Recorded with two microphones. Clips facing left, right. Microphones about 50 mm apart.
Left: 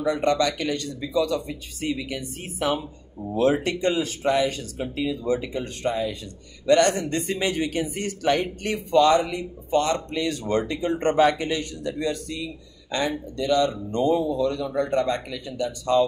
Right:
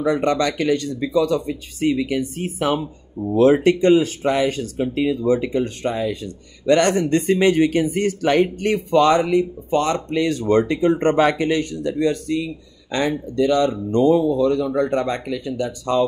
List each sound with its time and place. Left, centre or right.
0.0 s speech: right
6.6 s speech: right
11.1 s speech: right